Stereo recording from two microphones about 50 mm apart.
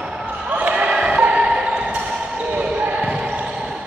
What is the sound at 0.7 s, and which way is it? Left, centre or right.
Basketball bounce, centre.